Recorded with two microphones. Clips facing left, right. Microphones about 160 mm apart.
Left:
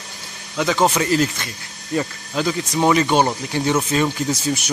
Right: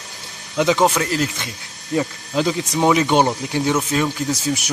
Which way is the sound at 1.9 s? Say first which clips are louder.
Right 2 dB; 15° right (ahead or behind).